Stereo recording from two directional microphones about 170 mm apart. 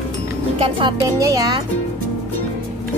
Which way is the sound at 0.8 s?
20° right (ahead or behind).